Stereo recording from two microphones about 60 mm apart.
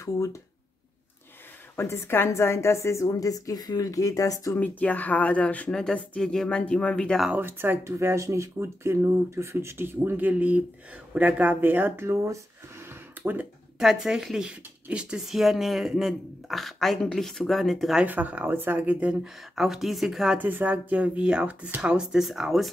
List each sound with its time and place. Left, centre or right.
0.0 s a woman's voice: left
1.8 s a woman's voice: left
4.6 s speech: left
5.7 s speech: centre
7.3 s speech: right
7.8 s speech: right
12.1 s speech: right
12.8 s a sound: right
13.7 s speech: centre
15.1 s speech: centre
18.0 s speech: right
19.2 s speech: centre
20.3 s speech: right
21.8 s speech: centre